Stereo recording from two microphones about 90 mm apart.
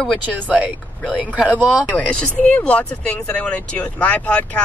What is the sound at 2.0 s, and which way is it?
Speech, 10° left (ahead or behind).